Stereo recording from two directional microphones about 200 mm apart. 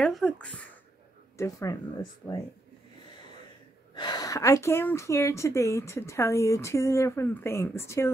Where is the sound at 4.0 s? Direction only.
20° left (ahead or behind).